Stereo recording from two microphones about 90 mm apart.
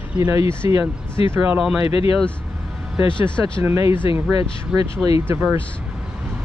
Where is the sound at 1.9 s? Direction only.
90° left.